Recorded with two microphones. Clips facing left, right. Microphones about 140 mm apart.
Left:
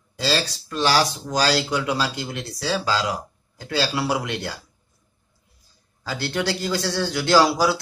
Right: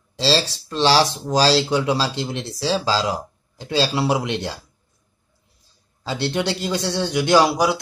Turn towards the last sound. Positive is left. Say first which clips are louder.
# right 1 dB
turn(degrees=-20)  # may be behind; listen again after turning